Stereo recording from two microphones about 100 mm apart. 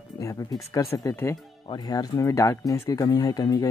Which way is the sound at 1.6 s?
45° left (ahead or behind).